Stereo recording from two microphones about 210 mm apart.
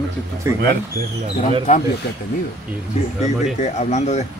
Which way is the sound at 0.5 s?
15° right (ahead or behind).